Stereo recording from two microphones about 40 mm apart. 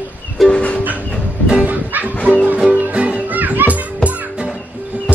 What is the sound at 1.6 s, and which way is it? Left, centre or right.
Music, right.